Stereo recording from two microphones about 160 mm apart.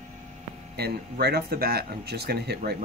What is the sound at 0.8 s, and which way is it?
Speech, 85° right.